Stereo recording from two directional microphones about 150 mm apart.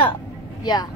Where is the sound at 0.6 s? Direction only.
30° left (ahead or behind).